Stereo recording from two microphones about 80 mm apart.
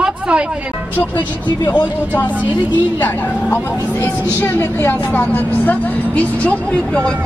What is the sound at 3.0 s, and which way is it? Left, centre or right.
A woman's voice, left.